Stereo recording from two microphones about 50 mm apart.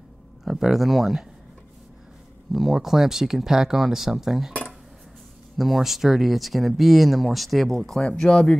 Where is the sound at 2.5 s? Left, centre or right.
Centre.